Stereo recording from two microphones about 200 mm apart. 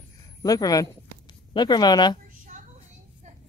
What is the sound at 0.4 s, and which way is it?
Speech, 20° left (ahead or behind).